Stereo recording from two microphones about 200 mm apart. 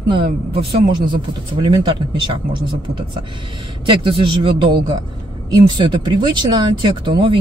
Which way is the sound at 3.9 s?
25° right (ahead or behind).